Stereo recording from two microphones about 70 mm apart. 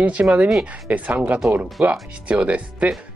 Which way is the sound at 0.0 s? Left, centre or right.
Centre.